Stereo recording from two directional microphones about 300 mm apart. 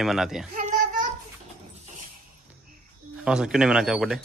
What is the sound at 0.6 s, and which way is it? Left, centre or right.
Child singing, right.